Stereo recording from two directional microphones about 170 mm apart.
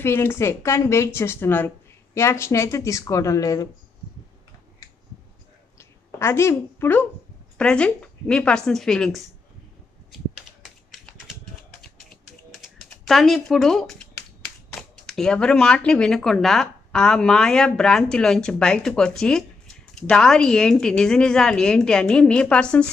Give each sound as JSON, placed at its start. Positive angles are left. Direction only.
{"t": 0.0, "sound": "a woman's voice", "side_deg": 15}
{"t": 5.8, "sound": "a sound", "side_deg": 15}
{"t": 7.5, "sound": "speech", "side_deg": 5}
{"t": 10.6, "sound": "typing", "side_deg": 0}
{"t": 12.4, "sound": "typing", "side_deg": 0}
{"t": 14.7, "sound": "speech", "side_deg": 5}